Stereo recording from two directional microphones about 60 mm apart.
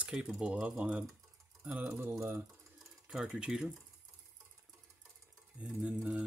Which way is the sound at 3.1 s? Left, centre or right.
Centre.